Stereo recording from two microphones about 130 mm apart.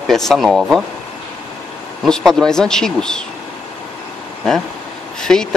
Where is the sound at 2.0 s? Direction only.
5° left (ahead or behind).